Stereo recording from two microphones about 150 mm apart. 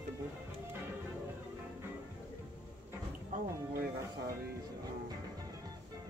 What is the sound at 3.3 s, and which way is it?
Speech, 80° right.